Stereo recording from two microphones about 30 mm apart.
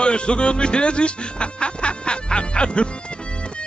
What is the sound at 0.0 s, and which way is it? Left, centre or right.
A woman's voice, left.